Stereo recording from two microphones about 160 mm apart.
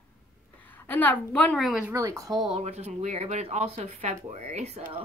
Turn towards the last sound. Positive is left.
turn(degrees=-40)  # may be behind; listen again after turning